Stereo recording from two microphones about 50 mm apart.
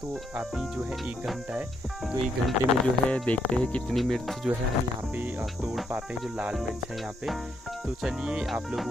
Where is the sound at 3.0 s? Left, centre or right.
Left.